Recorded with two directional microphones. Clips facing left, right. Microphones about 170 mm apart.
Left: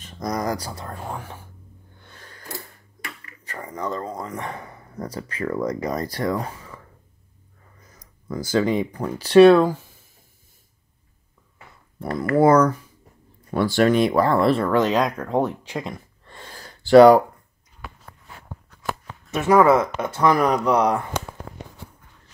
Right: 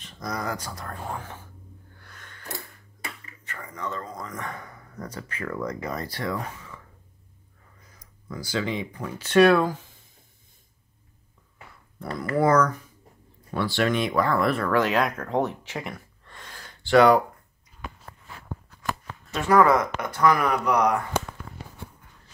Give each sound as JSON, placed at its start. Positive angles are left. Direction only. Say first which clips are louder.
{"t": 0.0, "sound": "speech", "louder": "left 6 dB", "side_deg": 40}
{"t": 0.9, "sound": "speech", "louder": "left 2 dB", "side_deg": 5}
{"t": 2.0, "sound": "a sound", "louder": "left 6 dB", "side_deg": 30}
{"t": 3.4, "sound": "speech", "louder": "left 5 dB", "side_deg": 35}
{"t": 8.0, "sound": "speech", "louder": "left 7 dB", "side_deg": 45}
{"t": 9.5, "sound": "speech", "louder": "left 6 dB", "side_deg": 15}
{"t": 12.2, "sound": "speech", "louder": "left 5 dB", "side_deg": 30}
{"t": 13.5, "sound": "speech", "louder": "left 6 dB", "side_deg": 45}
{"t": 16.3, "sound": "gasp", "louder": "left 4 dB", "side_deg": 30}
{"t": 18.9, "sound": "speech", "louder": "left 2 dB", "side_deg": 15}